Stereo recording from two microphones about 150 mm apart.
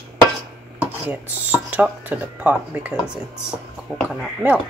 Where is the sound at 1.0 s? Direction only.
10° right (ahead or behind).